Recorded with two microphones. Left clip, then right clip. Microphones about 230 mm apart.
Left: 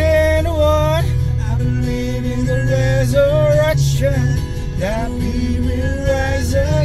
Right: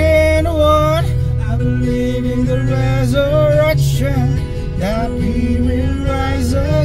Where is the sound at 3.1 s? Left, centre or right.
Right.